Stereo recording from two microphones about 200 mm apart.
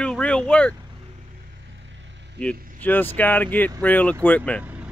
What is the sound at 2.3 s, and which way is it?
Speech, 5° left (ahead or behind).